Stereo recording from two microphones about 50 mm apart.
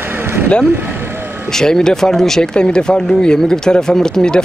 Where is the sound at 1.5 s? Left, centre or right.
Centre.